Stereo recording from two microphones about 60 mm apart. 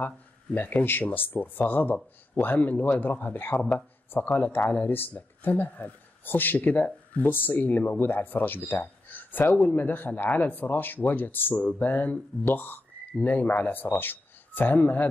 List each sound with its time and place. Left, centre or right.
0.6 s speech: left